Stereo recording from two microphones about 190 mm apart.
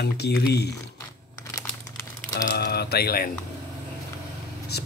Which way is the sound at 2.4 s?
55° left (ahead or behind).